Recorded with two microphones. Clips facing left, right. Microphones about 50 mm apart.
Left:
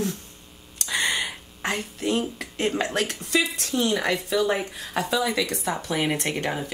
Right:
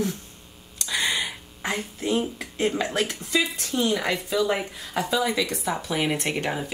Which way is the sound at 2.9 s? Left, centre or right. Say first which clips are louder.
Even; left.